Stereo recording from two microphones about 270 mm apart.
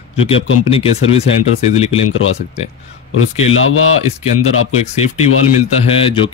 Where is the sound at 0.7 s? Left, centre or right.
Left.